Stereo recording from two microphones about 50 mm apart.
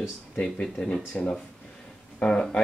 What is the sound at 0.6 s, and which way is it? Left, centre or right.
Speech, centre.